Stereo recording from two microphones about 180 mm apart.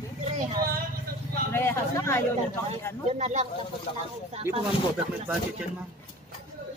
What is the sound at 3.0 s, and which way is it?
Speech, 40° right (ahead or behind).